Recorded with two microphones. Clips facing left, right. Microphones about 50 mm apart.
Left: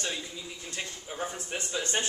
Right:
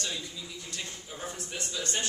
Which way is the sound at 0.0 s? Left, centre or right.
Left.